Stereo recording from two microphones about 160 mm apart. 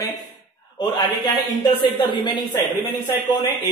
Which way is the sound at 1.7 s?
30° left (ahead or behind).